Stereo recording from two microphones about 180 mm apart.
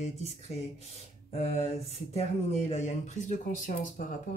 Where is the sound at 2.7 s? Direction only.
40° left (ahead or behind).